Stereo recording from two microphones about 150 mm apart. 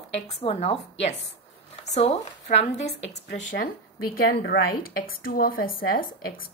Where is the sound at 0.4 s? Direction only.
40° left (ahead or behind).